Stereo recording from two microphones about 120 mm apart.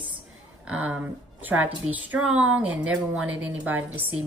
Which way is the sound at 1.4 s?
15° right (ahead or behind).